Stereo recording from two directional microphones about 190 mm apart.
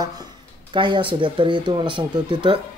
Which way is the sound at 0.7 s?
25° right (ahead or behind).